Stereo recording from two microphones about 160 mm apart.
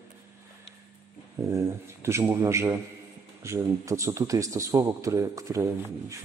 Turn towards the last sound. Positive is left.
turn(degrees=-20)  # may be behind; listen again after turning